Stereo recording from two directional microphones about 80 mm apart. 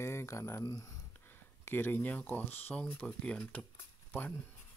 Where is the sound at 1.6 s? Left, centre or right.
Left.